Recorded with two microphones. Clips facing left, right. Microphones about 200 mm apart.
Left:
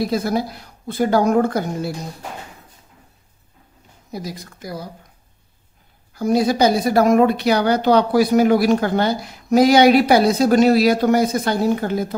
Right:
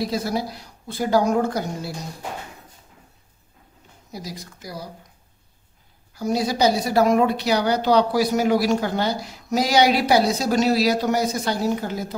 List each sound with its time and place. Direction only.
0.0 s a woman's voice: 55° left (ahead or behind)
4.1 s a woman's voice: 55° left (ahead or behind)
6.1 s a woman's voice: 55° left (ahead or behind)